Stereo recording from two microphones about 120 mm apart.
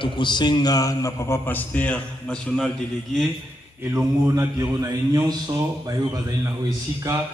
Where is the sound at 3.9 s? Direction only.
25° right (ahead or behind).